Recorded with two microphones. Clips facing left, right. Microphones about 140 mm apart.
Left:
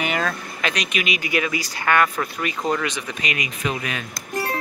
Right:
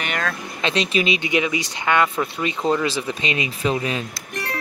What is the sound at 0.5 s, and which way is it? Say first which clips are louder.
Speech: right 7 dB; 25° right (ahead or behind).